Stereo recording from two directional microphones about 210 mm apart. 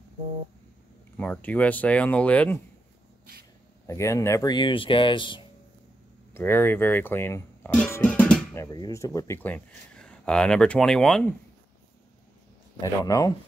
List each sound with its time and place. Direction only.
1.1 s speech: 5° left (ahead or behind)
3.8 s speech: 15° left (ahead or behind)
6.3 s speech: 10° left (ahead or behind)
8.6 s speech: 15° left (ahead or behind)
13.0 s speech: 15° left (ahead or behind)